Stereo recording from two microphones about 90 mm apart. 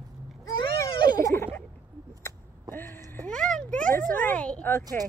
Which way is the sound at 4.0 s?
20° left (ahead or behind).